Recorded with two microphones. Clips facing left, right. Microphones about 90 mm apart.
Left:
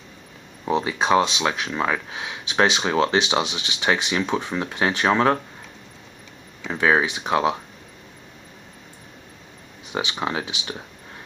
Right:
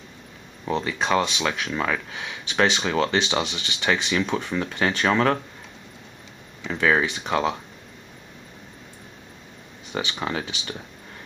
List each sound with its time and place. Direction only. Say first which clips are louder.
0.7 s speech: left 3 dB; 15° left (ahead or behind)
6.7 s speech: left 2 dB; 15° left (ahead or behind)
9.9 s speech: left 2 dB; 15° left (ahead or behind)